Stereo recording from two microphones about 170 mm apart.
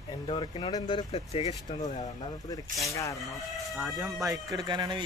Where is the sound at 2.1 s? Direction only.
20° left (ahead or behind).